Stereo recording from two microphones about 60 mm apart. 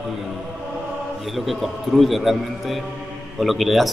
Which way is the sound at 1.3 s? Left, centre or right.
Centre.